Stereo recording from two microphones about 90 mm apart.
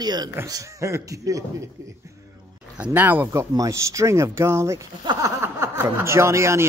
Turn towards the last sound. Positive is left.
turn(degrees=-30)  # may be behind; listen again after turning